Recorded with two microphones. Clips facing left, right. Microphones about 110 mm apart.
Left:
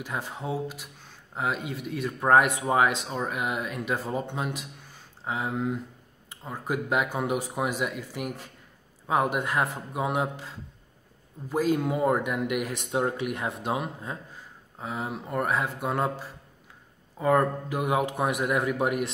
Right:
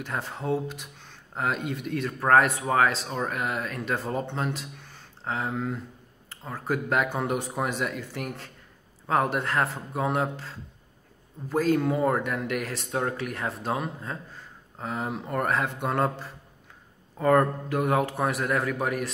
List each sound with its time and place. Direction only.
0.0 s speech: 10° left (ahead or behind)